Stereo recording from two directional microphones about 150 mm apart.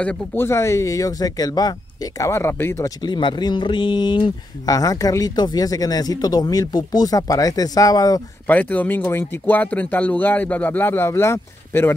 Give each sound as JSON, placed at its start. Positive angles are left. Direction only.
{"t": 0.0, "sound": "speech", "side_deg": 15}
{"t": 3.0, "sound": "speech", "side_deg": 30}
{"t": 8.5, "sound": "speech", "side_deg": 10}